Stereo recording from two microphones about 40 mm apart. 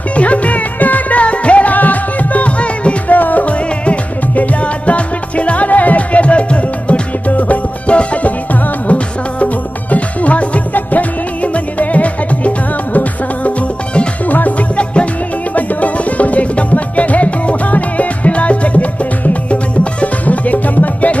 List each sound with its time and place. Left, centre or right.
0.1 s music: left
3.2 s music: left